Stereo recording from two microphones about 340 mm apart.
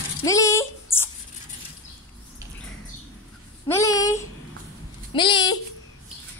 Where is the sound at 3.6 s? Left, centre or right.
Centre.